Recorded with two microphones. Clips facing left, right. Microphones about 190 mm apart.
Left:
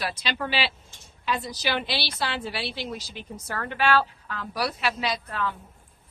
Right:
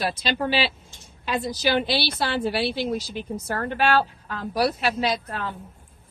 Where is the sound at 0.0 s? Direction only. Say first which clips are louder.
Right 5 dB; 45° right (ahead or behind).